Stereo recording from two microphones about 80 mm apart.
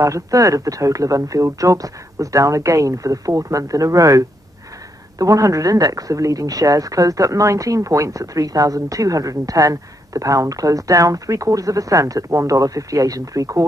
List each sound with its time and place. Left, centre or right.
0.0 s speech: right